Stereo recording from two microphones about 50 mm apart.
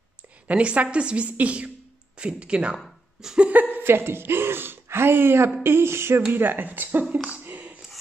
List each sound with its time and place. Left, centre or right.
0.5 s a woman's voice: right
3.2 s a sound: centre
3.8 s speech: right
6.3 s speech: right
7.4 s whispering: right